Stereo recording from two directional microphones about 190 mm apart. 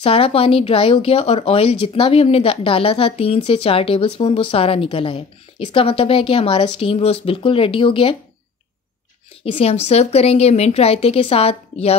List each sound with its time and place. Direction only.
0.0 s speech: 30° left (ahead or behind)
9.4 s a woman's voice: 30° left (ahead or behind)